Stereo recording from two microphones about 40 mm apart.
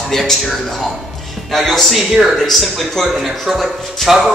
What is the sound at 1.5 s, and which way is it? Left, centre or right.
Speech, centre.